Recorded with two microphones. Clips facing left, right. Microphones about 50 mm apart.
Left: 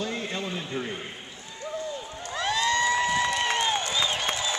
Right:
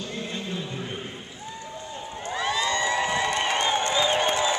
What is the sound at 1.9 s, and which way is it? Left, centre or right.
Run, right.